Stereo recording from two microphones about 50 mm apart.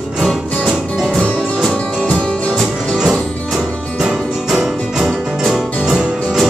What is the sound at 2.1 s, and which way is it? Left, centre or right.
Music, centre.